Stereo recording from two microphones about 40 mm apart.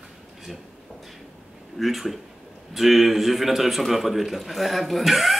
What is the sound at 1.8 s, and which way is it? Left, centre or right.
Speech, centre.